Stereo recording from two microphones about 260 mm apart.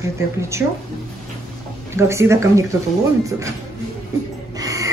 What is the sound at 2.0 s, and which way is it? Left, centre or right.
Speech, centre.